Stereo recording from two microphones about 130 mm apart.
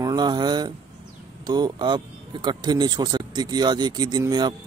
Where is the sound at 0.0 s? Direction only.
30° right (ahead or behind).